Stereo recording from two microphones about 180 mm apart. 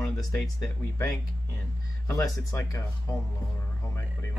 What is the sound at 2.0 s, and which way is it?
Speech, 15° left (ahead or behind).